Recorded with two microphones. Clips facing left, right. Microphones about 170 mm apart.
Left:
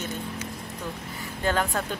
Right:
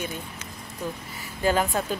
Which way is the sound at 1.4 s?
10° right (ahead or behind).